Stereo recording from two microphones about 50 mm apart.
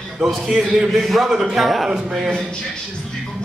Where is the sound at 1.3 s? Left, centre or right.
Centre.